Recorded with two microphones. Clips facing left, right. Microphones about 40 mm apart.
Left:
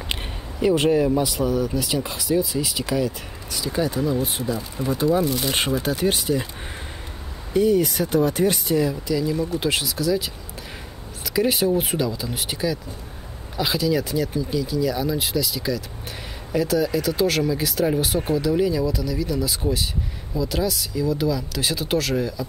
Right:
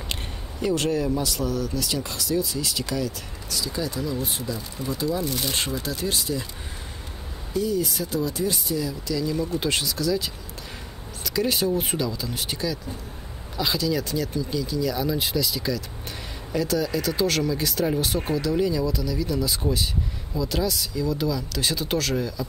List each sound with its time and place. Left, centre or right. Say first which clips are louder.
0.1 s speech: left 4 dB; centre
3.6 s speech: left 7 dB; left
7.5 s speech: left 6 dB; left
9.0 s speech: left 3 dB; centre
9.6 s speech: left 2 dB; centre